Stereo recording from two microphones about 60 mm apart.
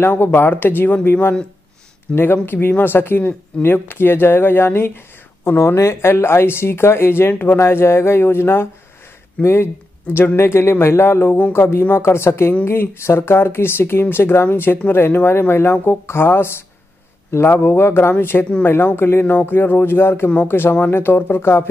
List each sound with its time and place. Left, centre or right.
0.0 s speech: left